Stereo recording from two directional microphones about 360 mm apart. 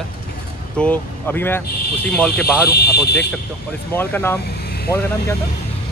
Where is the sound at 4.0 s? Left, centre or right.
Centre.